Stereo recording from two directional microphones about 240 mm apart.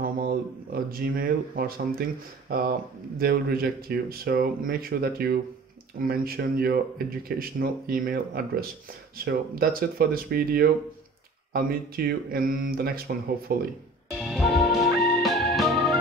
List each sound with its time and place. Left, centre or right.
0.0 s speech: right
3.2 s speech: right
14.2 s music: centre
15.0 s organ: centre